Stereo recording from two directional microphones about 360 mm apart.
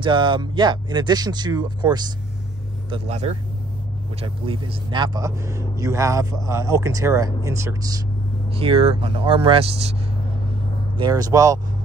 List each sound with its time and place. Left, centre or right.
0.0 s speech: centre
11.0 s speech: centre